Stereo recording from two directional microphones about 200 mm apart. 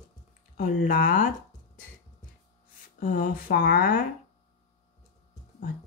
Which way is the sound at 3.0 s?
45° left (ahead or behind).